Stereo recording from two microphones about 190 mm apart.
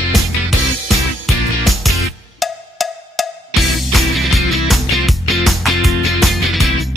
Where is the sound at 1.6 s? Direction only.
Centre (ahead or behind).